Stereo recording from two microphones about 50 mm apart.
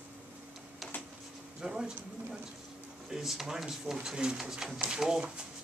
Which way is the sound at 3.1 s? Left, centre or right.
Centre.